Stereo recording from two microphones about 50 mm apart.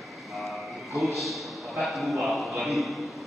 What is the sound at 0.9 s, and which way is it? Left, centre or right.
A man's voice, centre.